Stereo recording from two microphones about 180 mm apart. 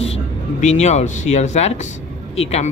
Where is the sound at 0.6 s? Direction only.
40° left (ahead or behind).